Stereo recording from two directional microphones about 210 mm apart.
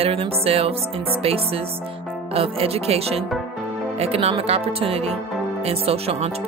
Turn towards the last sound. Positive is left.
turn(degrees=-30)  # may be behind; listen again after turning